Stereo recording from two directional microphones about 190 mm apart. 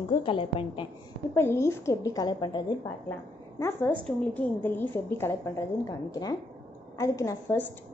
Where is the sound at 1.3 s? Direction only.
15° left (ahead or behind).